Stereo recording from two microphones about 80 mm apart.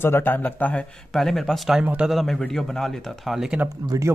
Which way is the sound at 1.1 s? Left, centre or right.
Centre.